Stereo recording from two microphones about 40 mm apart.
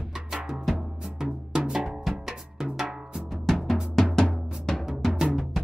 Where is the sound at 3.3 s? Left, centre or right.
Centre.